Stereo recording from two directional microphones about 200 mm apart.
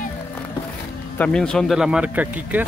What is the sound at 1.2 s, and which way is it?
Speech, 5° left (ahead or behind).